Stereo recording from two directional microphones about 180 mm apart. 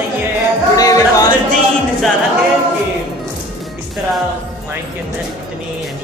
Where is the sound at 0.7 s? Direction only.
20° left (ahead or behind).